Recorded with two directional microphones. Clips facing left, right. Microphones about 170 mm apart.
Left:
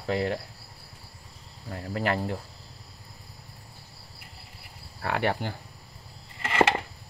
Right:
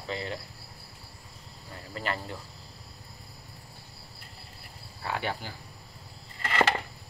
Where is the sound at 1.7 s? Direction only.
60° left (ahead or behind).